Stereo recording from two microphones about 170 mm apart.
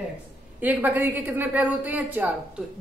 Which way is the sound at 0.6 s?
10° right (ahead or behind).